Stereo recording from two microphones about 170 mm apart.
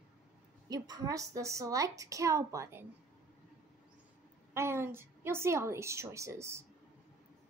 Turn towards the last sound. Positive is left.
turn(degrees=-15)  # may be behind; listen again after turning